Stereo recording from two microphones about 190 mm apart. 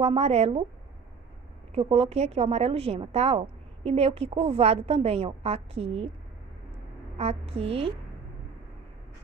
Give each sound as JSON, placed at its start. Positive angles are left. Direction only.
{"t": 0.0, "sound": "a woman's voice", "side_deg": -35}
{"t": 1.8, "sound": "a woman's voice", "side_deg": -30}
{"t": 7.2, "sound": "a woman's voice", "side_deg": -30}